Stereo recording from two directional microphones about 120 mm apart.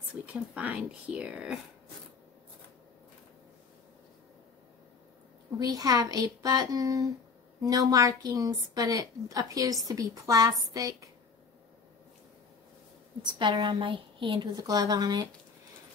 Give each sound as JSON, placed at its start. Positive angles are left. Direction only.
{"t": 0.3, "sound": "speech", "side_deg": -10}
{"t": 5.6, "sound": "a woman's voice", "side_deg": -30}
{"t": 13.4, "sound": "a woman's voice", "side_deg": -40}